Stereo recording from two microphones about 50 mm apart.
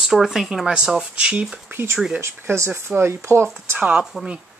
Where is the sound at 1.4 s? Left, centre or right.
Centre.